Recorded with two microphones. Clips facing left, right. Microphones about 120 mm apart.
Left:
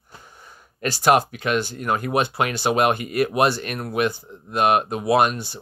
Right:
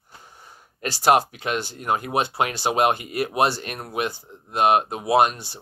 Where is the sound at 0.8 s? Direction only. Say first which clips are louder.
Left 1 dB; 30° right (ahead or behind).